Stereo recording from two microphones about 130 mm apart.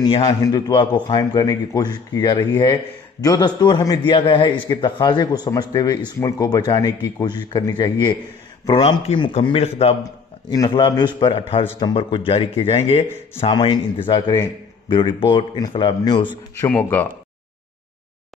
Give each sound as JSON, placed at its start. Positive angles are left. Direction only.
{"t": 0.4, "sound": "a man's voice", "side_deg": 30}
{"t": 10.5, "sound": "a man's voice", "side_deg": 35}
{"t": 11.1, "sound": "speech", "side_deg": 45}
{"t": 13.5, "sound": "a man's voice", "side_deg": 35}
{"t": 16.6, "sound": "speech", "side_deg": 15}